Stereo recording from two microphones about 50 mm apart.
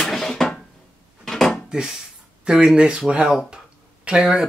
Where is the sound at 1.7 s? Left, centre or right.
Centre.